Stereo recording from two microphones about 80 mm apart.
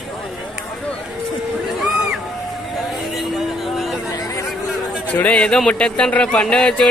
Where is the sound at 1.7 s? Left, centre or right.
Centre.